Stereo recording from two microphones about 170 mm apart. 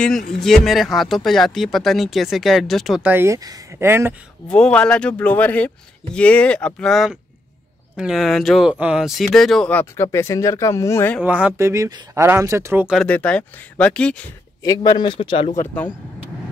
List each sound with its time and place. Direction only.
0.4 s speech: centre (ahead or behind)
4.5 s speech: 5° left (ahead or behind)
11.2 s speech: 10° right (ahead or behind)
12.9 s speech: 5° left (ahead or behind)
14.6 s a man's voice: 25° left (ahead or behind)
15.5 s speech: 10° left (ahead or behind)